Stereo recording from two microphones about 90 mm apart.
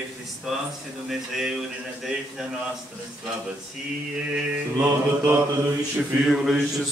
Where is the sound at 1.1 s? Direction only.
5° right (ahead or behind).